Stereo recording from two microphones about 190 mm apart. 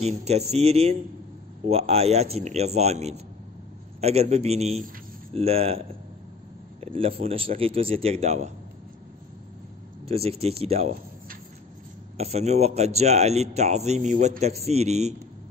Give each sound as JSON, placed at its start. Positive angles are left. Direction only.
{"t": 0.0, "sound": "a man's voice", "side_deg": -35}
{"t": 10.0, "sound": "a man's voice", "side_deg": -30}
{"t": 12.2, "sound": "a man's voice", "side_deg": -35}